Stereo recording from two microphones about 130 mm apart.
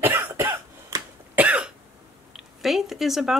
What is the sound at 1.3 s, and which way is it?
Cough, 10° right (ahead or behind).